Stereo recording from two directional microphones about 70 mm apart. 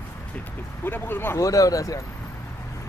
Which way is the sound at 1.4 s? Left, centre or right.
Left.